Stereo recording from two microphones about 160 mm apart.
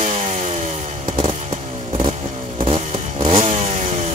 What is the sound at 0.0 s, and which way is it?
Chainsaw, 50° right (ahead or behind).